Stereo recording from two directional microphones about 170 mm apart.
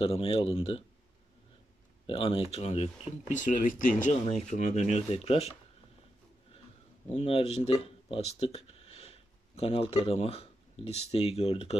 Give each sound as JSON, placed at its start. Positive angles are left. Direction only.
{"t": 0.0, "sound": "speech", "side_deg": 35}
{"t": 2.0, "sound": "speech", "side_deg": 30}
{"t": 7.1, "sound": "speech", "side_deg": 35}